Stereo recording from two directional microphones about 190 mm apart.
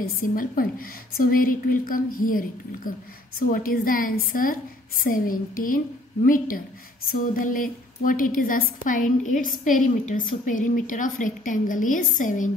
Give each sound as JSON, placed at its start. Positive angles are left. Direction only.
{"t": 0.0, "sound": "a woman's voice", "side_deg": 50}